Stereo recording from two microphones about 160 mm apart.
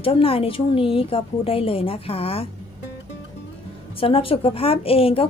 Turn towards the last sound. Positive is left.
turn(degrees=35)  # may be behind; listen again after turning